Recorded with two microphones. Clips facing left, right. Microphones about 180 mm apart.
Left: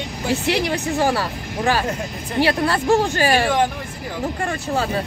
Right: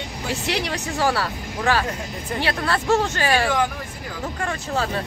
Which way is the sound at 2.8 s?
15° left (ahead or behind).